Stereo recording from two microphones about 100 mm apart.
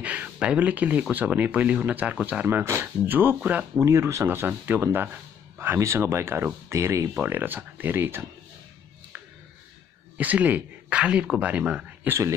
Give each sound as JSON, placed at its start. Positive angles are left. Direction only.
{"t": 0.0, "sound": "a sound", "side_deg": -15}
{"t": 1.1, "sound": "speech", "side_deg": -15}
{"t": 3.8, "sound": "speech", "side_deg": -30}
{"t": 10.1, "sound": "speech", "side_deg": -15}